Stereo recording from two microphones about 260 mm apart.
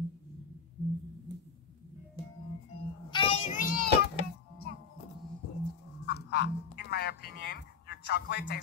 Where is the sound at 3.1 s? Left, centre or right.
Centre.